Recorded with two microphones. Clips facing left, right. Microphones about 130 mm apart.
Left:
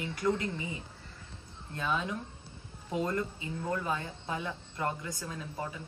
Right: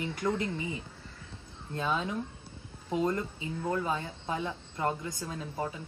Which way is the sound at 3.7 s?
25° right (ahead or behind).